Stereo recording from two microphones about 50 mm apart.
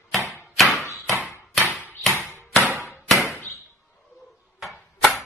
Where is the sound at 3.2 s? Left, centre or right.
Left.